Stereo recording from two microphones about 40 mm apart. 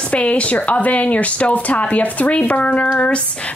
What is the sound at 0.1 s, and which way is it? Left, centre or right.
Speech, left.